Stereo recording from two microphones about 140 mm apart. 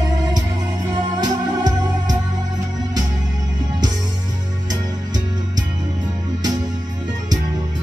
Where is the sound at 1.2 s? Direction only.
30° right (ahead or behind).